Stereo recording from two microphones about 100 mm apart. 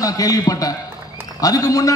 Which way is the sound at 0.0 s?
35° left (ahead or behind).